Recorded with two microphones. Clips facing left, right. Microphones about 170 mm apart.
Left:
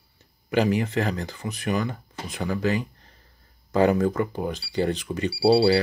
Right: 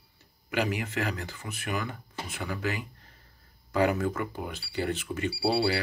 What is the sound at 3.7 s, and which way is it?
Speech, 25° left (ahead or behind).